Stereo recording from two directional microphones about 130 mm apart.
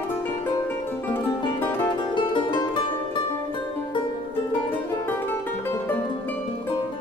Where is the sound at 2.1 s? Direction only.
40° left (ahead or behind).